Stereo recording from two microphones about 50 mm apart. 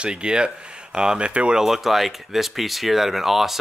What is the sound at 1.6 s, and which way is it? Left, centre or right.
Speech, centre.